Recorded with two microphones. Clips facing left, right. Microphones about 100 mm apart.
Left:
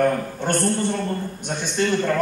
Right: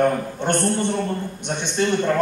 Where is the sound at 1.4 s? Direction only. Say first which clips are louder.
Right 1 dB; 20° right (ahead or behind).